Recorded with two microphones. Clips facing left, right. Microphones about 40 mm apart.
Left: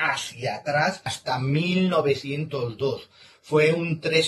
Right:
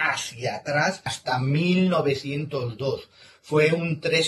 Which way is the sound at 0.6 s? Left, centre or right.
Centre.